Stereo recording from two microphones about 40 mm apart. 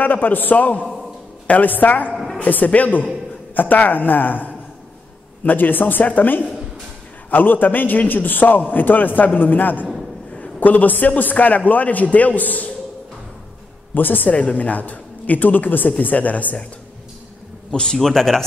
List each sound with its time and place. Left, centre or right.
0.0 s a man's voice: left
13.9 s a man's voice: left
14.3 s a man's voice: left
17.6 s a man's voice: left
17.9 s a man's voice: centre